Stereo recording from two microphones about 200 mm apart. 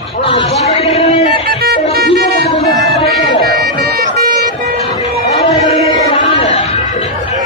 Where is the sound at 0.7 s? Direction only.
30° left (ahead or behind).